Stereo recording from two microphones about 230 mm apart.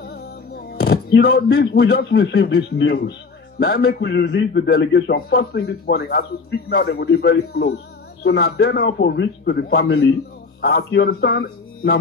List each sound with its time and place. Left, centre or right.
0.0 s speech: left